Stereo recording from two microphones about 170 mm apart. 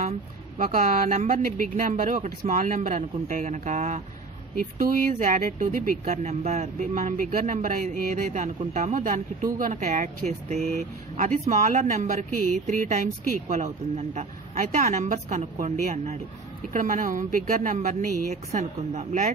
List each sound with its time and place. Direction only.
0.6 s speech: 55° right (ahead or behind)